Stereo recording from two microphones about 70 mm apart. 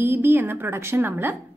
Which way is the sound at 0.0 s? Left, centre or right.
Right.